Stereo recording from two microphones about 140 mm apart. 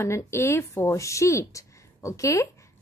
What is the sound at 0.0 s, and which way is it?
Speech, 20° left (ahead or behind).